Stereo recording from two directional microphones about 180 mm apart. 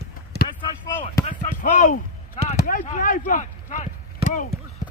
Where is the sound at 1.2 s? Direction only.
45° left (ahead or behind).